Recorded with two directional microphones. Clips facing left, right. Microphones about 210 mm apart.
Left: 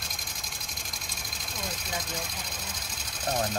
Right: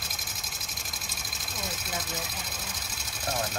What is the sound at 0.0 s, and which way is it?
Vehicle, 5° right (ahead or behind).